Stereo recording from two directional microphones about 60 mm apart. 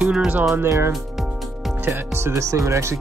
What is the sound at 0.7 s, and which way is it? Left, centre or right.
Speech, right.